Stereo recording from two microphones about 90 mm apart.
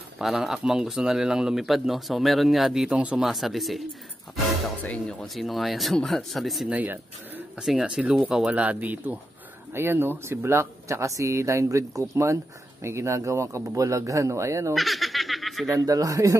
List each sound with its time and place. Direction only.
0.2 s speech: 5° right (ahead or behind)
3.2 s speech: 5° right (ahead or behind)
4.8 s speech: 15° left (ahead or behind)
5.2 s speech: centre (ahead or behind)
6.7 s speech: 20° right (ahead or behind)
7.6 s speech: 5° right (ahead or behind); by 14.7 s 35° right (ahead or behind)
14.7 s snicker: centre (ahead or behind)
15.8 s speech: 40° right (ahead or behind)